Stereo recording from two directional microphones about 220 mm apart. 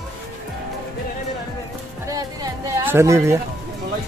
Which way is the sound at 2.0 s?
15° right (ahead or behind).